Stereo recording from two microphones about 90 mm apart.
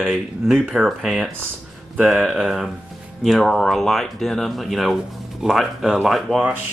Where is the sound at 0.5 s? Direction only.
Centre (ahead or behind).